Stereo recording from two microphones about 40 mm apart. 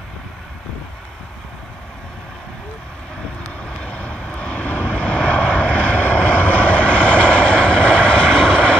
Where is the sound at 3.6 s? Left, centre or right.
Left.